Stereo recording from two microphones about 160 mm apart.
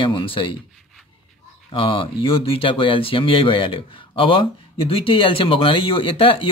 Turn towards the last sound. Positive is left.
turn(degrees=35)  # may be behind; listen again after turning